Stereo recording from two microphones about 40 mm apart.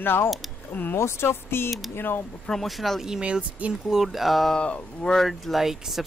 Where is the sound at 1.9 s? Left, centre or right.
Left.